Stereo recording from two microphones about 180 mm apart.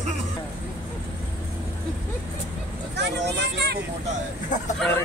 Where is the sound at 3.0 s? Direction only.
65° right (ahead or behind).